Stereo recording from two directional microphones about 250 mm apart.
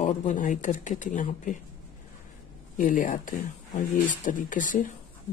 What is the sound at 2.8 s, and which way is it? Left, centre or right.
Speech, left.